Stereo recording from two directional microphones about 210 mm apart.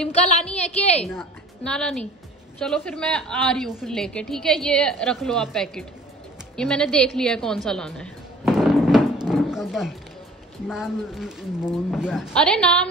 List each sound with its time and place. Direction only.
0.1 s a woman's voice: 30° left (ahead or behind)
1.0 s a woman's voice: 5° left (ahead or behind)
6.5 s a sound: 5° left (ahead or behind)
10.7 s a woman's voice: 5° right (ahead or behind)